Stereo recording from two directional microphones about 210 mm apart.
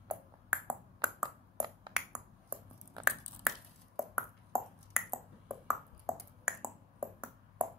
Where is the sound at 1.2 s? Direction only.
20° right (ahead or behind).